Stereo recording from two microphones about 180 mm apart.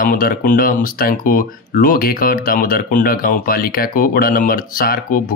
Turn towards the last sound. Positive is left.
turn(degrees=50)  # may be behind; listen again after turning